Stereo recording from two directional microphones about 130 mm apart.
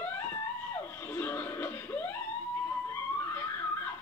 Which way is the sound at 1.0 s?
15° left (ahead or behind).